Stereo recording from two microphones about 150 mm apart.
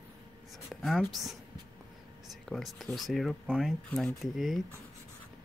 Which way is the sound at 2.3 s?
Centre (ahead or behind).